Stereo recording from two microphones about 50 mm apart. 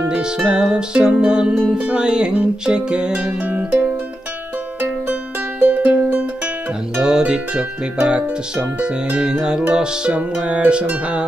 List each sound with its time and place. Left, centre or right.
0.1 s music: centre
3.4 s music: right
5.6 s music: right
7.0 s music: centre